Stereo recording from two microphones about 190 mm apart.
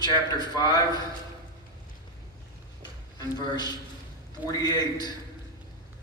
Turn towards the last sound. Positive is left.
turn(degrees=20)  # may be behind; listen again after turning